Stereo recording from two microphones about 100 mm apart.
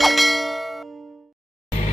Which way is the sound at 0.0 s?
Centre (ahead or behind).